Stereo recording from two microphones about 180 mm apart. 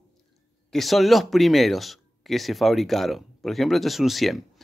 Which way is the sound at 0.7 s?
Centre (ahead or behind).